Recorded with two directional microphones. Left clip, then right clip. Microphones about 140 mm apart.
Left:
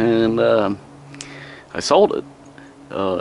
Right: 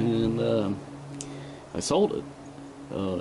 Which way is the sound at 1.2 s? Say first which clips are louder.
Left 5 dB; 20° left (ahead or behind).